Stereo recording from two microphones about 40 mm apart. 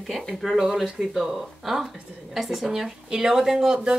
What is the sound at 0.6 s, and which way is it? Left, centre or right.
A woman's voice, centre.